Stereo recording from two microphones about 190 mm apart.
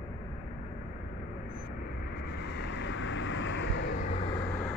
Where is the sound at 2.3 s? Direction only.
65° left (ahead or behind).